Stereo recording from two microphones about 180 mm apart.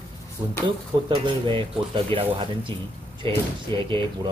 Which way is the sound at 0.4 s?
20° right (ahead or behind).